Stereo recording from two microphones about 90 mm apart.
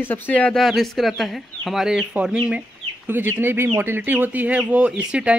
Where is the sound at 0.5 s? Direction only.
Centre (ahead or behind).